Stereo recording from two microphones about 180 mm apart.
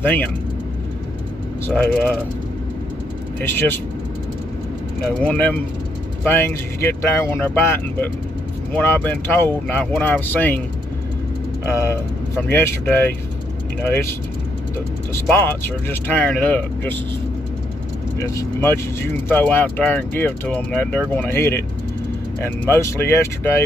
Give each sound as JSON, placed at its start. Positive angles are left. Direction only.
{"t": 0.0, "sound": "speech", "side_deg": 10}
{"t": 1.7, "sound": "speech", "side_deg": 10}
{"t": 3.3, "sound": "speech", "side_deg": 10}
{"t": 5.0, "sound": "speech", "side_deg": 5}
{"t": 11.7, "sound": "speech", "side_deg": 15}
{"t": 15.1, "sound": "speech", "side_deg": 10}
{"t": 18.2, "sound": "speech", "side_deg": 20}